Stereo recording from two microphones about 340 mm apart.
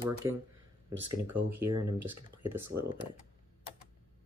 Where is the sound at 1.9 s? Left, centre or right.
Right.